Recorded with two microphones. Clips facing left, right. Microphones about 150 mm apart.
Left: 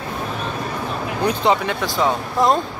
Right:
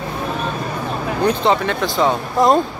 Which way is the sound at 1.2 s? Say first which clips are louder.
Right 2 dB; 10° left (ahead or behind).